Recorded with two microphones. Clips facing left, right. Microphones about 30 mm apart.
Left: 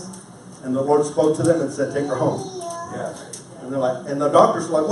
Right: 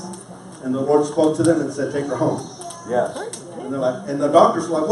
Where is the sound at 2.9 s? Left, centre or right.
Right.